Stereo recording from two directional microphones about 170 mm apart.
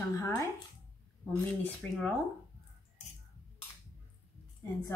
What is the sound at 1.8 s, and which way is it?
Speech, centre (ahead or behind).